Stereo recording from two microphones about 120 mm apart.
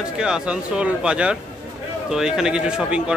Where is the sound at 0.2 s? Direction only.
5° right (ahead or behind).